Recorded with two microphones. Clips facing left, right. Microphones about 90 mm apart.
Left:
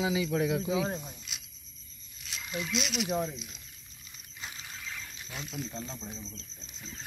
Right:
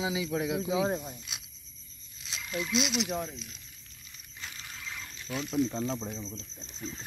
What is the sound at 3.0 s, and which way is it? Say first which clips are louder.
Speech: left 3 dB; 15° left (ahead or behind).